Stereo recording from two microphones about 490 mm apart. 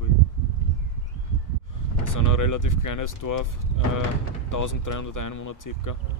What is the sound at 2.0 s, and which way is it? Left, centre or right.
Speech, left.